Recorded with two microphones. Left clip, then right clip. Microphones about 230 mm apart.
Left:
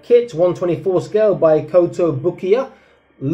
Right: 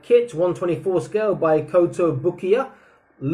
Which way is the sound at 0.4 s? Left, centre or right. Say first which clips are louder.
Left 5 dB; centre.